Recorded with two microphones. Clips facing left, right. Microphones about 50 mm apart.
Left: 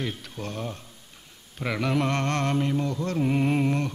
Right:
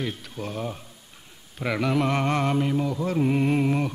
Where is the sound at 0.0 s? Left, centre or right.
Centre.